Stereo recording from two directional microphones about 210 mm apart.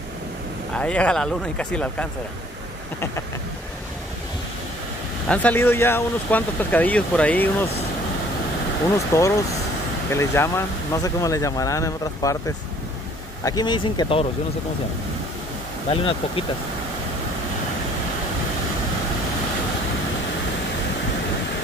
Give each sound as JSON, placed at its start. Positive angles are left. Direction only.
{"t": 0.7, "sound": "speech", "side_deg": 5}
{"t": 5.3, "sound": "speech", "side_deg": 5}
{"t": 8.9, "sound": "speech", "side_deg": 15}
{"t": 15.9, "sound": "speech", "side_deg": 25}